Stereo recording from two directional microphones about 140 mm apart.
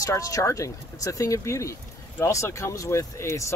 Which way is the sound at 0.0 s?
25° left (ahead or behind).